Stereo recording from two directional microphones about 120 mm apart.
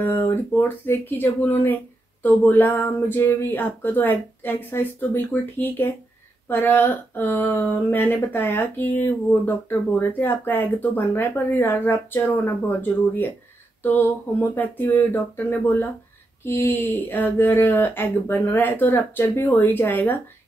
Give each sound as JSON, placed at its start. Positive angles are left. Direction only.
{"t": 0.0, "sound": "speech", "side_deg": 20}